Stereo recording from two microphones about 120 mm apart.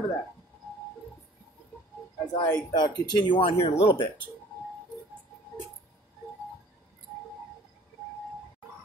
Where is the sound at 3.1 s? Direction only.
40° left (ahead or behind).